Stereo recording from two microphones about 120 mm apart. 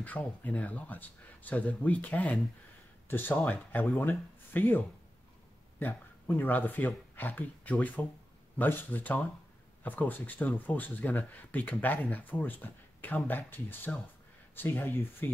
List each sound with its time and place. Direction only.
0.0 s speech: 15° left (ahead or behind)